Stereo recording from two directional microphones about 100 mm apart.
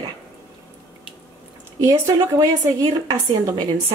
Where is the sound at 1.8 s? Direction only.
35° right (ahead or behind).